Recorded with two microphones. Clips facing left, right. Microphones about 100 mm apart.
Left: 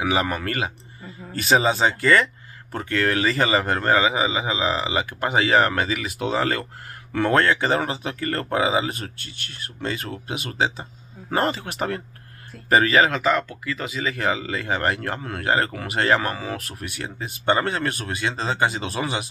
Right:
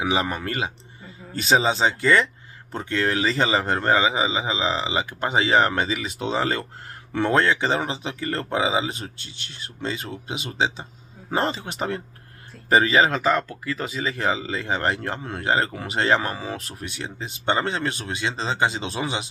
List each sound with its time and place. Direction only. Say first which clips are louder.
0.0 s speech: left 1 dB; 20° right (ahead or behind)
1.5 s speech: left 1 dB; 20° right (ahead or behind)
13.1 s speech: even; 35° right (ahead or behind)